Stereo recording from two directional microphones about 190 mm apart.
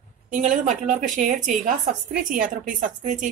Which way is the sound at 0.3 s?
40° right (ahead or behind).